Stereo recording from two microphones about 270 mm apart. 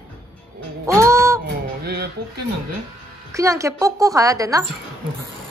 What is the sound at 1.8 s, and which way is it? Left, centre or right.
Speech, right.